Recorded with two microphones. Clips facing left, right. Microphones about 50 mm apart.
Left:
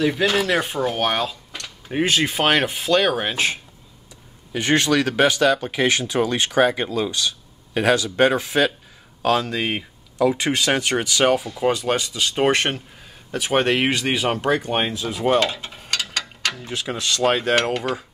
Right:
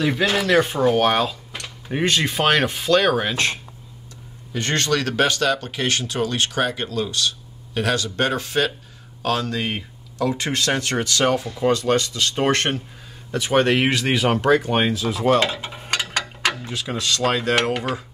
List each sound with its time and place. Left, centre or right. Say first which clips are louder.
0.2 s speech: right 2 dB; centre
4.6 s speech: left 3 dB; centre
15.6 s mechanisms: right 2 dB; centre
16.6 s speech: even; left
17.2 s speech: left 2 dB; centre
17.7 s a sound: left 1 dB; centre